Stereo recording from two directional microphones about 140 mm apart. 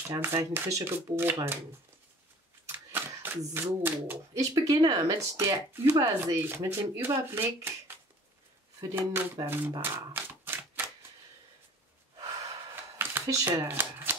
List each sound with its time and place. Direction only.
0.1 s speech: 20° right (ahead or behind)
2.9 s speech: 15° right (ahead or behind)
8.8 s speech: 15° right (ahead or behind)
9.8 s music: 15° right (ahead or behind)
12.9 s shuffling cards: 20° right (ahead or behind)